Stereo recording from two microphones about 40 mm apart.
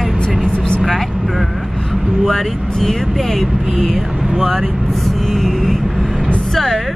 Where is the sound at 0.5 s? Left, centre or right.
Left.